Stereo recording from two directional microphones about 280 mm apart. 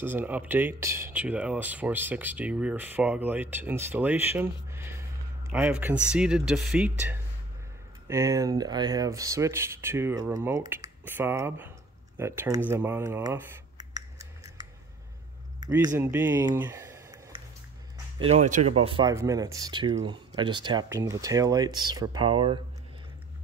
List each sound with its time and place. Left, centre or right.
0.0 s speech: centre
12.2 s computer keyboard: centre
15.6 s speech: centre
18.2 s speech: right